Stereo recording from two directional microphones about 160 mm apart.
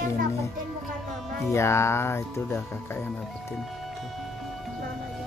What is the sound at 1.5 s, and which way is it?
Speech, 15° left (ahead or behind).